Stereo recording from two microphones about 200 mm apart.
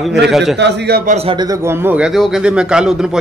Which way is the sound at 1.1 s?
25° right (ahead or behind).